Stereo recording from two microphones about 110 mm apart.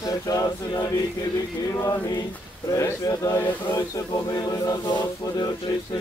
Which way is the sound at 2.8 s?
30° left (ahead or behind).